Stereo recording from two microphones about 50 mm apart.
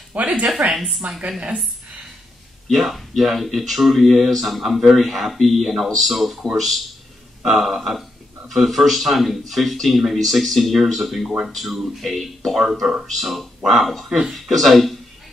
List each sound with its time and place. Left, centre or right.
0.1 s a woman's voice: right
2.7 s speech: centre